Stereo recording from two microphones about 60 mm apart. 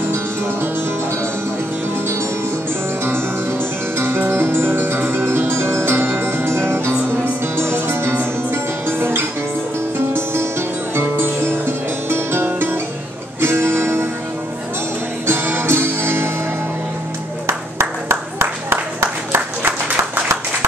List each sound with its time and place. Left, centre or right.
4.0 s music: right
15.2 s music: right
17.5 s a sound: right